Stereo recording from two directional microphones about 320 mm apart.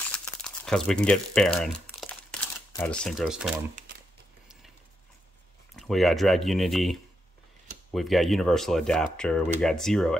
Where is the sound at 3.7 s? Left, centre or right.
Right.